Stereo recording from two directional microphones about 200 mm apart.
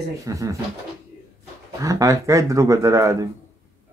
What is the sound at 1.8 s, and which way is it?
Speech, 15° right (ahead or behind).